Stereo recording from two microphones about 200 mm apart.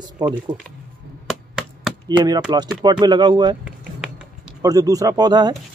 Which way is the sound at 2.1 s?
20° right (ahead or behind).